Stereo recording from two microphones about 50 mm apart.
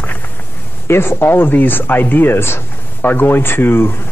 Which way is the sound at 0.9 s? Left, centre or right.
Left.